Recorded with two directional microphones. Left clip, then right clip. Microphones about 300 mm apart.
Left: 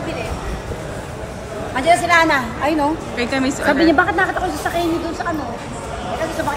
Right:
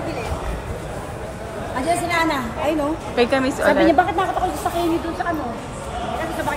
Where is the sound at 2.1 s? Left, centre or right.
Left.